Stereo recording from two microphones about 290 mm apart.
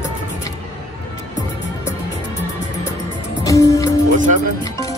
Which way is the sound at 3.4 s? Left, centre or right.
Centre.